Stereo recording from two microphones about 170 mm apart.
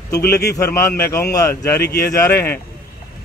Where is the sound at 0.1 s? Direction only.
15° left (ahead or behind).